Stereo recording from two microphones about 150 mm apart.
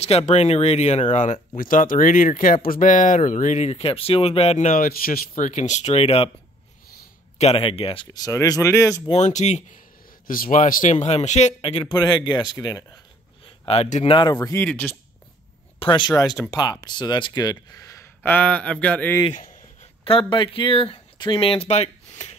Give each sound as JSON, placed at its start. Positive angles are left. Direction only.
{"t": 0.3, "sound": "speech", "side_deg": 45}
{"t": 1.6, "sound": "speech", "side_deg": 65}
{"t": 7.3, "sound": "speech", "side_deg": 40}
{"t": 9.1, "sound": "speech", "side_deg": 50}
{"t": 10.2, "sound": "speech", "side_deg": 65}
{"t": 11.6, "sound": "speech", "side_deg": 35}
{"t": 13.7, "sound": "speech", "side_deg": 50}
{"t": 14.0, "sound": "speech", "side_deg": 30}
{"t": 15.8, "sound": "speech", "side_deg": 30}
{"t": 20.1, "sound": "speech", "side_deg": 35}